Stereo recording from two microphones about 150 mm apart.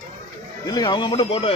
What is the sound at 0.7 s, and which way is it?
Speech, 30° left (ahead or behind).